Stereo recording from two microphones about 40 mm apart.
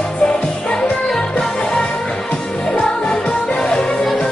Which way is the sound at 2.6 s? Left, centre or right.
Left.